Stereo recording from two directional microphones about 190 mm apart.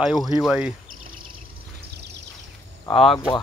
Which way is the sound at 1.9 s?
60° right (ahead or behind).